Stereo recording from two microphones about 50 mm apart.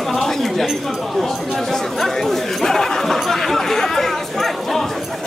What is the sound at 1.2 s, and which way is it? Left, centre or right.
Chatter, centre.